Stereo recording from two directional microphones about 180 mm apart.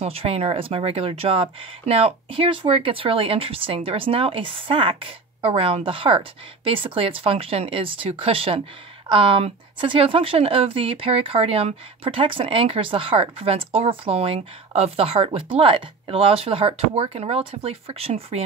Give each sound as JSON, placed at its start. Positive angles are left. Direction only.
{"t": 0.0, "sound": "speech", "side_deg": -30}